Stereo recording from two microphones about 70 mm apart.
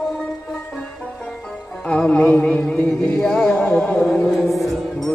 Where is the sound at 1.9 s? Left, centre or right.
Centre.